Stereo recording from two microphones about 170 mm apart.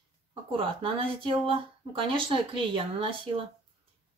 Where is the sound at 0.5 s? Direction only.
30° right (ahead or behind).